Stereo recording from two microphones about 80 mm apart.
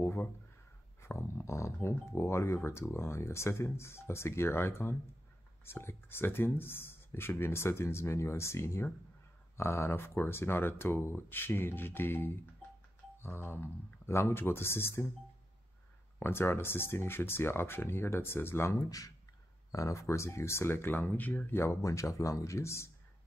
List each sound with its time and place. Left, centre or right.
0.0 s speech: left
16.2 s speech: left
21.5 s speech: left